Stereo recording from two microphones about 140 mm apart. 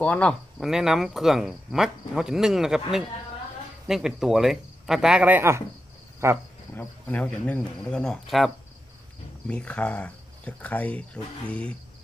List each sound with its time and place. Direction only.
0.0 s speech: 10° left (ahead or behind)
0.6 s speech: 5° right (ahead or behind)
6.2 s cricket: 20° right (ahead or behind)
6.7 s speech: 15° left (ahead or behind)
9.5 s speech: 10° left (ahead or behind)